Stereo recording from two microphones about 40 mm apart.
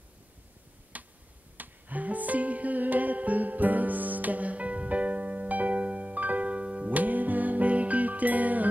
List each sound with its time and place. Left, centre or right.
0.9 s a sound: right
1.6 s music: right
6.9 s music: right